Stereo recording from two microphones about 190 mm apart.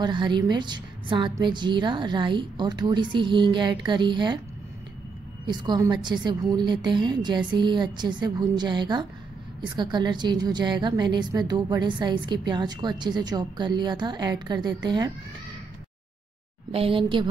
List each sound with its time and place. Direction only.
0.0 s a woman's voice: 25° right (ahead or behind)
5.5 s a woman's voice: 20° right (ahead or behind)
16.7 s a woman's voice: 30° right (ahead or behind)